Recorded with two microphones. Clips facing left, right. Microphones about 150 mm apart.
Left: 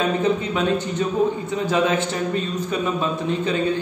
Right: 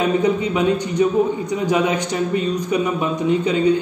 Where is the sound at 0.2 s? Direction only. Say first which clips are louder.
Right 3 dB; 15° right (ahead or behind).